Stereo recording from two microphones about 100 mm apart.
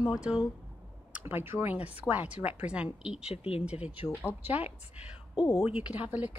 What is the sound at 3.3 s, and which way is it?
Speech, 85° left.